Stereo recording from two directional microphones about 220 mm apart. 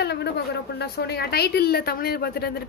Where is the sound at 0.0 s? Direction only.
50° left (ahead or behind).